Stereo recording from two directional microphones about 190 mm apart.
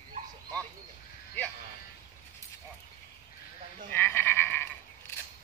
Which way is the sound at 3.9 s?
10° left (ahead or behind).